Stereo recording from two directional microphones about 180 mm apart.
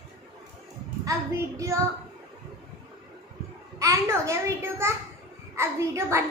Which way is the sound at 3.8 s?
15° right (ahead or behind).